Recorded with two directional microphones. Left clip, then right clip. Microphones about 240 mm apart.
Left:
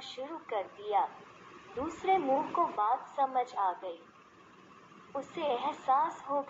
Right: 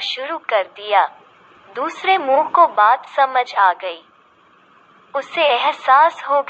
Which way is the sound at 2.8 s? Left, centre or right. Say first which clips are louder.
Right 16 dB; right.